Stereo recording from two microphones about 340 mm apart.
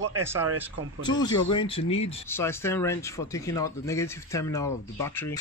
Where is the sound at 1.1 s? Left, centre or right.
Centre.